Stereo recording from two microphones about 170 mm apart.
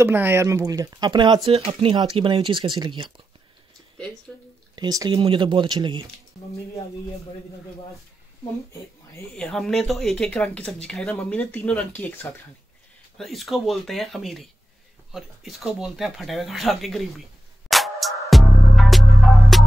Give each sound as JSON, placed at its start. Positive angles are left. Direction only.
{"t": 0.0, "sound": "speech", "side_deg": -10}
{"t": 4.7, "sound": "speech", "side_deg": -20}
{"t": 9.3, "sound": "speech", "side_deg": 0}
{"t": 13.2, "sound": "speech", "side_deg": 0}
{"t": 17.6, "sound": "music", "side_deg": 0}